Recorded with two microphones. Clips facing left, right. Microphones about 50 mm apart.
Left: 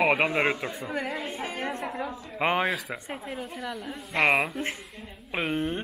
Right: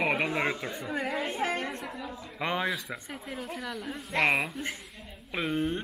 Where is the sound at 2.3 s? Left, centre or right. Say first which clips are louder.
Left 5 dB; left.